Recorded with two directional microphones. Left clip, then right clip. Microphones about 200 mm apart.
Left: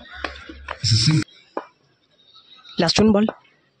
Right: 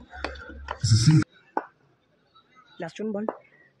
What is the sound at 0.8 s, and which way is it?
Speech, 45° right (ahead or behind).